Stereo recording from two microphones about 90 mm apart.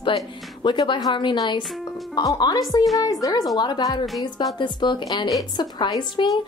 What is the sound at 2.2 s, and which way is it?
A woman's voice, 45° left (ahead or behind).